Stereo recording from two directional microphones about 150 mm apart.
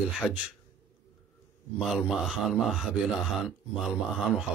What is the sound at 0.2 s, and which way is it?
Speech, 15° left (ahead or behind).